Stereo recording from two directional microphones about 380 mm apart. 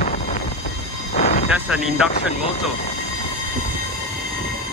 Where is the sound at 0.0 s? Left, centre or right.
Left.